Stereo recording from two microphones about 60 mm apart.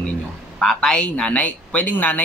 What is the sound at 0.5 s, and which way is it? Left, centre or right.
Speech, centre.